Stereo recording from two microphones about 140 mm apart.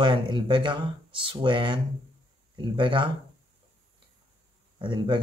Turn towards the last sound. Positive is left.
turn(degrees=-35)  # may be behind; listen again after turning